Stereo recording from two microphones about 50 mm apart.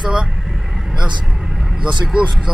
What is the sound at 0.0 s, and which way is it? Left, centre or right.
Vehicle, centre.